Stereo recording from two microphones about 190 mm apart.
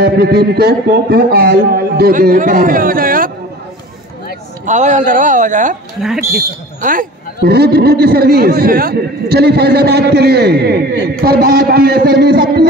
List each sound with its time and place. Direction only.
0.0 s a man's voice: 55° right (ahead or behind)
4.6 s a man's voice: 40° right (ahead or behind); by 12.6 s 55° right (ahead or behind)